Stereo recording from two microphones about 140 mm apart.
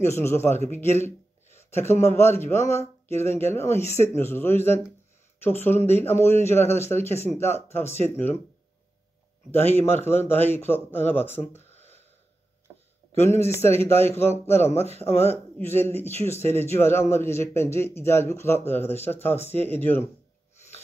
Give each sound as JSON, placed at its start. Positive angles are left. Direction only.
{"t": 0.0, "sound": "speech", "side_deg": 20}
{"t": 9.5, "sound": "speech", "side_deg": 15}
{"t": 13.2, "sound": "speech", "side_deg": 20}